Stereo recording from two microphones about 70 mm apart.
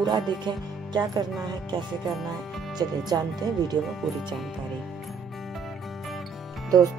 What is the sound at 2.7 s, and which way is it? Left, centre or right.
Speech, right.